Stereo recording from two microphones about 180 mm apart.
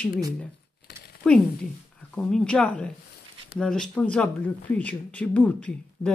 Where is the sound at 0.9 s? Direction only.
65° left (ahead or behind).